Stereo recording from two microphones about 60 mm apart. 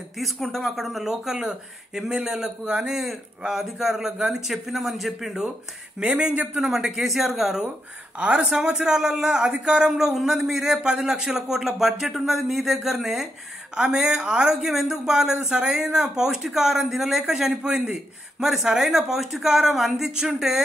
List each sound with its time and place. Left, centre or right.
0.2 s speech: centre
5.9 s speech: centre
6.6 s speech: centre
8.2 s speech: centre